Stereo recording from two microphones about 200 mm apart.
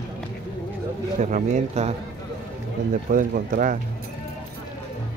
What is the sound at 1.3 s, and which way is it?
Speech, 35° right (ahead or behind).